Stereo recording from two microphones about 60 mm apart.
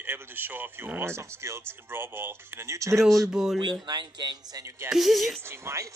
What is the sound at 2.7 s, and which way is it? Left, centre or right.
Speech, right.